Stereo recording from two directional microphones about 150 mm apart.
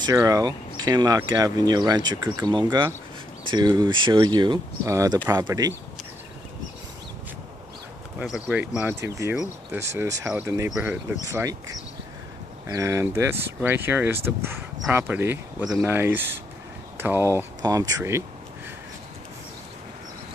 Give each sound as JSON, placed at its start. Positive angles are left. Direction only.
{"t": 0.0, "sound": "speech", "side_deg": -25}
{"t": 8.2, "sound": "speech", "side_deg": -5}
{"t": 11.3, "sound": "speech", "side_deg": -20}